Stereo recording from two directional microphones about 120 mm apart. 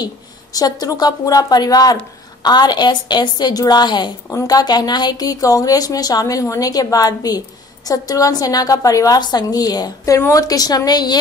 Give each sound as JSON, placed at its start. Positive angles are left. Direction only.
{"t": 0.0, "sound": "a woman's voice", "side_deg": 30}